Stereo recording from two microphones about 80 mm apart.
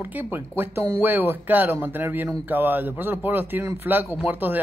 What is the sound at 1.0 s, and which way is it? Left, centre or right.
Speech, right.